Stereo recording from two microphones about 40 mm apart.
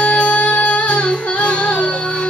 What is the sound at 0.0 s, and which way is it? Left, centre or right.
Music, left.